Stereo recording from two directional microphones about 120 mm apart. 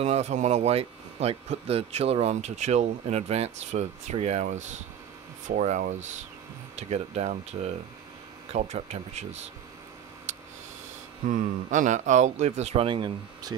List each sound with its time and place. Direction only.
0.0 s a man's voice: 70° right (ahead or behind); by 6.0 s 85° right
6.8 s speech: 65° right (ahead or behind)
10.3 s tick: 90° right
11.2 s a man's voice: 90° right; by 12.8 s 65° right (ahead or behind)
12.8 s speech: 45° right (ahead or behind)
13.5 s speech: 35° right (ahead or behind)